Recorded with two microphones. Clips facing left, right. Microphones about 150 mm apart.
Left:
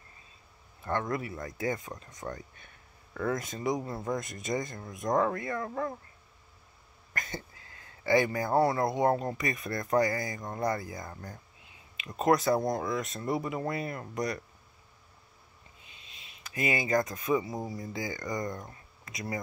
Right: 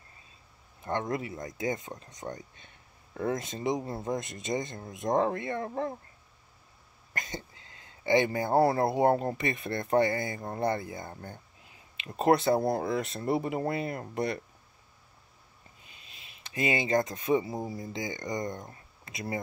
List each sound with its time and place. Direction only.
0.8 s speech: 20° right (ahead or behind)
7.2 s speech: 20° right (ahead or behind)
16.2 s speech: 30° right (ahead or behind)